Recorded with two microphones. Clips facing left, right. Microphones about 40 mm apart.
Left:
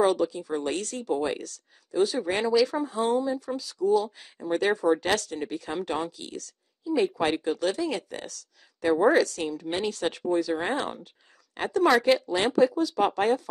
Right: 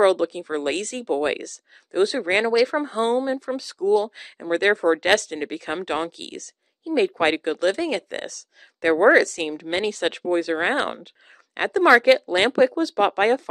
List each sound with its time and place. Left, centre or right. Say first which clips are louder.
0.0 s speech: right 5 dB; right